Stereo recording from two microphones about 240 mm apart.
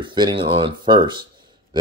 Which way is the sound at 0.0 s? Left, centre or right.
Centre.